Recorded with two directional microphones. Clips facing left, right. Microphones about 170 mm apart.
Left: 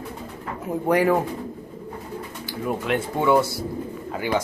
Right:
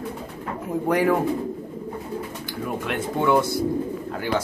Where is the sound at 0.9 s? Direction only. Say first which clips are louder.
Left 1 dB; 5° left (ahead or behind).